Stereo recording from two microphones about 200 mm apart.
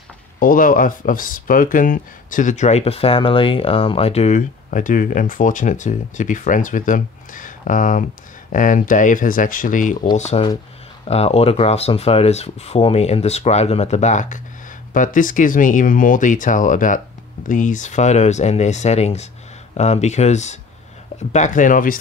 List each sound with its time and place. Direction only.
0.4 s speech: 45° left (ahead or behind)